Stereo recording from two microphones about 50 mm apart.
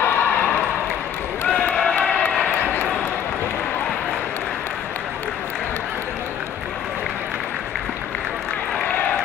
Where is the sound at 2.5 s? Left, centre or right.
Left.